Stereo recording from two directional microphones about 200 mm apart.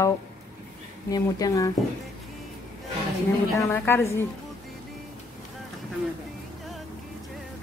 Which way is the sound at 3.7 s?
10° left (ahead or behind).